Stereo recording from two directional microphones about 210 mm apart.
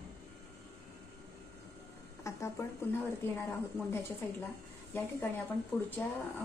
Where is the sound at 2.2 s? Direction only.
10° left (ahead or behind).